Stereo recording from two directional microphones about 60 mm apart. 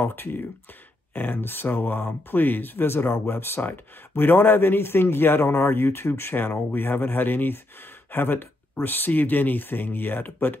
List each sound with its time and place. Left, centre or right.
0.0 s speech: left